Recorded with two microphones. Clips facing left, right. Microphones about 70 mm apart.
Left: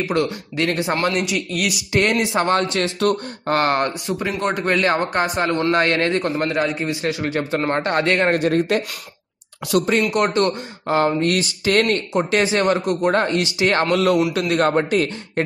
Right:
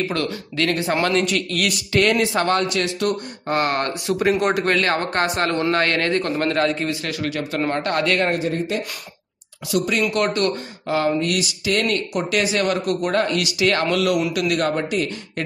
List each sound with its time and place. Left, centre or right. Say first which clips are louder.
0.0 s speech: left 3 dB; centre
1.0 s a man's voice: right 1 dB; centre
1.9 s speech: right 1 dB; left
4.2 s speech: right 5 dB; centre
4.7 s a man's voice: left 2 dB; centre
5.2 s speech: left 1 dB; centre
5.7 s speech: left 2 dB; centre
8.4 s speech: left 5 dB; left
10.0 s speech: left 2 dB; left
12.1 s speech: left 3 dB; left